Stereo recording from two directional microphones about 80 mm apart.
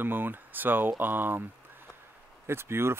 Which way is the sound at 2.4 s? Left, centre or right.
Right.